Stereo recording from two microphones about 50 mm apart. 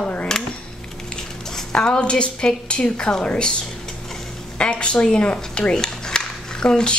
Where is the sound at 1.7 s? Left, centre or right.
Centre.